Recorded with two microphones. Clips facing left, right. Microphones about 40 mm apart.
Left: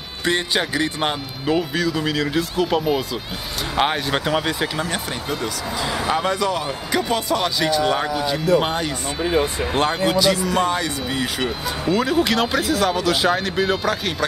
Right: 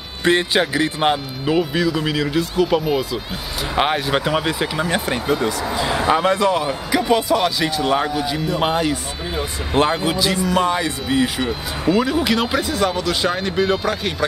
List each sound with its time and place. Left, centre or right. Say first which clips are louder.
0.2 s speech: right 4 dB; centre
10.4 s speech: right 2 dB; right
10.7 s speech: right 3 dB; centre